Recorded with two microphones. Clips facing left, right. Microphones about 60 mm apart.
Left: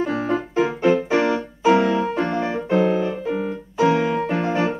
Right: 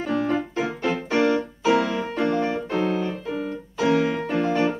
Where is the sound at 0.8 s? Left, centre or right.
Centre.